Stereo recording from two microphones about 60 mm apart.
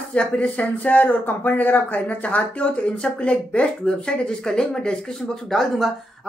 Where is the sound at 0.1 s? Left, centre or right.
Left.